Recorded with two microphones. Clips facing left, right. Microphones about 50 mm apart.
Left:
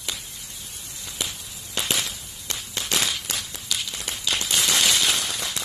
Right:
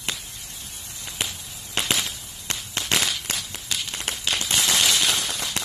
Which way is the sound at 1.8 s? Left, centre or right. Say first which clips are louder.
Right 2 dB; right.